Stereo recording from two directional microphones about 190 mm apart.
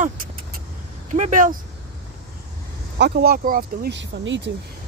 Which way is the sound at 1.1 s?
40° right (ahead or behind).